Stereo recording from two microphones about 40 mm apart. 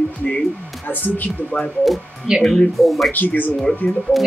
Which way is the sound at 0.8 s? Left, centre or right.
Left.